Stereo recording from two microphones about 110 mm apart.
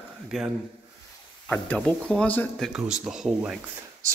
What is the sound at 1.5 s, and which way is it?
Speech, 10° left (ahead or behind).